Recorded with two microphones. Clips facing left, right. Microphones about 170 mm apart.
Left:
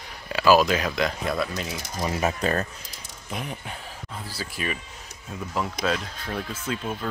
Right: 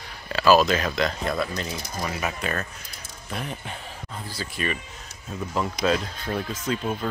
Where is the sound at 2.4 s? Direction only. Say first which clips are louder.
Left 4 dB; 35° left (ahead or behind).